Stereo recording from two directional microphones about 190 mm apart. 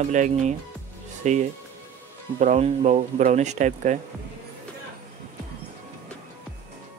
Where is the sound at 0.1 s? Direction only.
40° right (ahead or behind).